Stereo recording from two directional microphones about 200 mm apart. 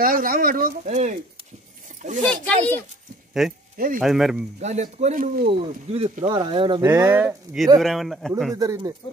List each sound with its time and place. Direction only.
0.0 s speech: 45° right (ahead or behind)
2.2 s speech: 5° left (ahead or behind)
3.7 s speech: 45° right (ahead or behind)
4.0 s speech: centre (ahead or behind)
4.6 s speech: 35° right (ahead or behind)
5.5 s speech: 30° right (ahead or behind)
6.9 s speech: 10° right (ahead or behind)
7.8 s speech: centre (ahead or behind)
8.5 s speech: 15° right (ahead or behind)